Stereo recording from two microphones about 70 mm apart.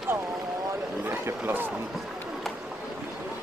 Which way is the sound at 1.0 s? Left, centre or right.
Right.